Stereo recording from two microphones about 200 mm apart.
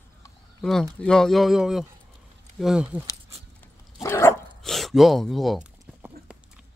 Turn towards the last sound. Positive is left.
turn(degrees=-5)  # may be behind; listen again after turning